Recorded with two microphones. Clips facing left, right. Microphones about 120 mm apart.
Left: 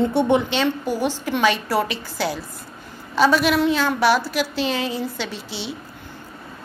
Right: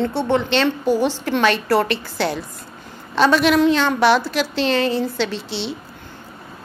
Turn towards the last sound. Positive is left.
turn(degrees=10)  # may be behind; listen again after turning